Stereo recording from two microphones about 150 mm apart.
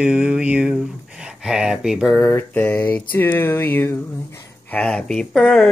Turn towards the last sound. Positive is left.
turn(degrees=0)  # may be behind; listen again after turning